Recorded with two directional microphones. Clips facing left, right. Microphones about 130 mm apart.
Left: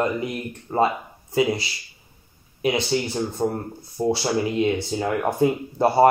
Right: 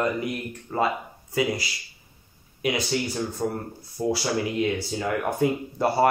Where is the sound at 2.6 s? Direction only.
25° left (ahead or behind).